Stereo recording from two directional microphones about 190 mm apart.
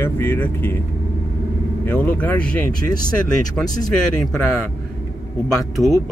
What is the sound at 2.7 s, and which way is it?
Speech, 50° right (ahead or behind).